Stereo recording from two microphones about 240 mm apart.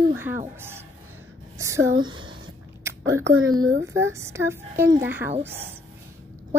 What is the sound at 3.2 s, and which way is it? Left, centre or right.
Speech, right.